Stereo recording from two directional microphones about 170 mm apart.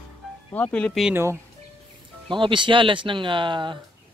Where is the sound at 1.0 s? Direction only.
15° right (ahead or behind).